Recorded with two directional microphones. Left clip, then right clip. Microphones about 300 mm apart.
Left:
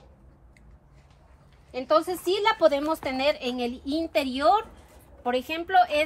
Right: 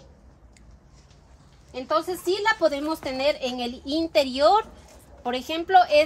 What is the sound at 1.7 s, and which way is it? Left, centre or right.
A woman's voice, left.